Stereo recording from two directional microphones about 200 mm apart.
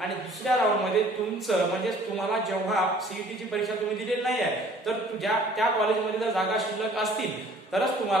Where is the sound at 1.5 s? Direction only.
Centre (ahead or behind).